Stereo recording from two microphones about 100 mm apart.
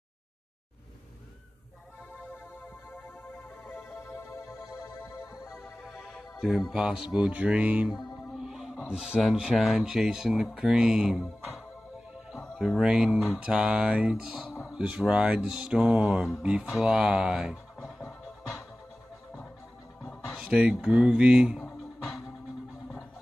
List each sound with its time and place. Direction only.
4.0 s music: 30° left (ahead or behind)
5.5 s music: centre (ahead or behind)
6.7 s speech: 5° right (ahead or behind)
12.5 s speech: 5° right (ahead or behind)
16.4 s scratch: 10° right (ahead or behind)
20.1 s speech: 5° right (ahead or behind)